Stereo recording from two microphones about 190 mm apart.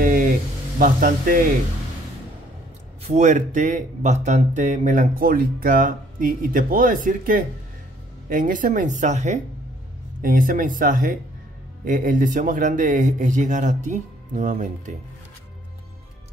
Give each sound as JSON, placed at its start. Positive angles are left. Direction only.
{"t": 0.0, "sound": "a sound", "side_deg": -45}
{"t": 0.7, "sound": "speech", "side_deg": -45}
{"t": 3.0, "sound": "speech", "side_deg": -40}